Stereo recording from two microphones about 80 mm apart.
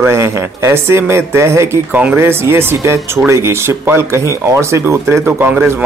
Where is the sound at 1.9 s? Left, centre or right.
Right.